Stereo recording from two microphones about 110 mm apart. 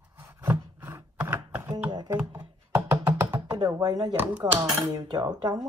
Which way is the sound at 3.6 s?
35° right (ahead or behind).